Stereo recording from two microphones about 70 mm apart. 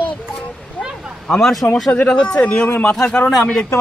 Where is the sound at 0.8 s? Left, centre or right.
Left.